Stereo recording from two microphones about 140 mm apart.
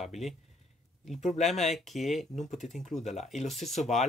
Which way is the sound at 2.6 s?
60° left (ahead or behind).